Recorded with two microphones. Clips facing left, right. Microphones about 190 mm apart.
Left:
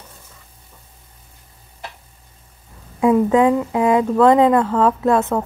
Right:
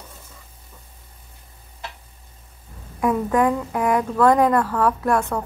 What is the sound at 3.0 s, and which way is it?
A woman's voice, 25° left (ahead or behind).